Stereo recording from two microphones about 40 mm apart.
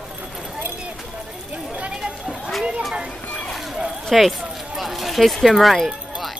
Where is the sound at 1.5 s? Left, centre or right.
Right.